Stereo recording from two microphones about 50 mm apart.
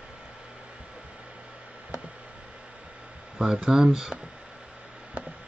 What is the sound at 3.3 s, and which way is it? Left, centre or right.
Speech, centre.